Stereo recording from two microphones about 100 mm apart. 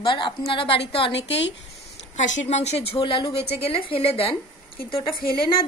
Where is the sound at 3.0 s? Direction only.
50° left (ahead or behind).